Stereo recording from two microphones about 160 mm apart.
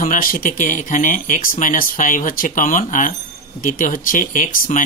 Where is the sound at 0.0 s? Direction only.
60° left (ahead or behind).